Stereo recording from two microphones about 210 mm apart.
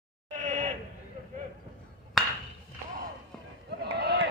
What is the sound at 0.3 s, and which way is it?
Sheep, 35° right (ahead or behind).